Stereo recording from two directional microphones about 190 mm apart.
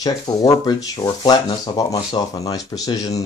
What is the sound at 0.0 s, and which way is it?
Speech, 20° left (ahead or behind).